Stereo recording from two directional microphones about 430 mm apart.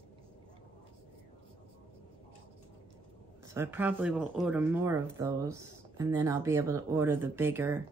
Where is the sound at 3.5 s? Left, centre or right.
Centre.